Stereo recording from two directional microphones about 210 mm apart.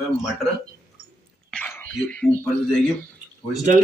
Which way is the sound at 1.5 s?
5° left (ahead or behind).